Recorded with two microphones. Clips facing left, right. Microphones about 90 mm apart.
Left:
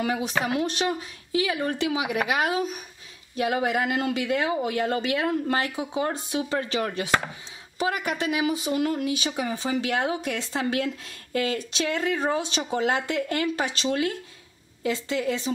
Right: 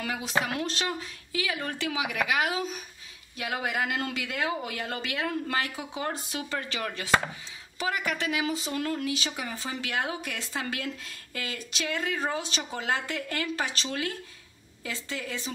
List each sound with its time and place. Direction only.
0.0 s speech: 25° left (ahead or behind)